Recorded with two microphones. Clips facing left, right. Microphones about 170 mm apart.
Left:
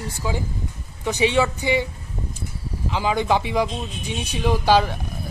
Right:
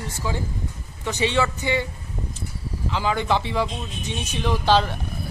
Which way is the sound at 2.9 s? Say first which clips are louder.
Left 2 dB; 15° left (ahead or behind).